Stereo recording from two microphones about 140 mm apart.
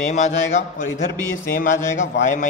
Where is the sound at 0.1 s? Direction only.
55° left (ahead or behind).